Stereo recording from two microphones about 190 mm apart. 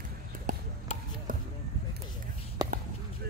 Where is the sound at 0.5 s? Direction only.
45° right (ahead or behind).